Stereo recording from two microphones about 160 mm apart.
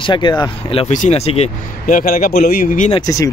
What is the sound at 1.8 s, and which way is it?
Speech, 60° left (ahead or behind).